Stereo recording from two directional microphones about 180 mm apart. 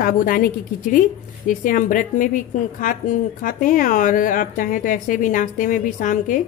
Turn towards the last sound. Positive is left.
turn(degrees=45)  # may be behind; listen again after turning